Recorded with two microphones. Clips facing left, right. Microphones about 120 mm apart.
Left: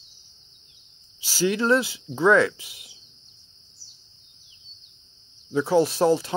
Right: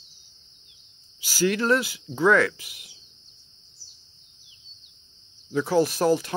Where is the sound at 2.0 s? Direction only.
Centre (ahead or behind).